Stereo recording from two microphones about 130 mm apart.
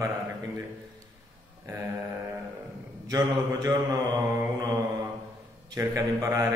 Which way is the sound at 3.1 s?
30° right (ahead or behind).